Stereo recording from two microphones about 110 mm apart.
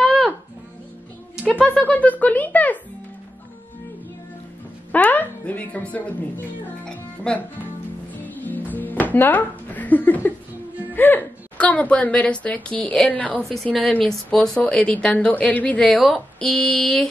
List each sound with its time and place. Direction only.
0.0 s music: centre (ahead or behind)
1.8 s a woman's voice: 15° left (ahead or behind)
4.9 s speech: 15° left (ahead or behind)
8.2 s music: 15° left (ahead or behind)
10.9 s a woman's voice: 15° left (ahead or behind)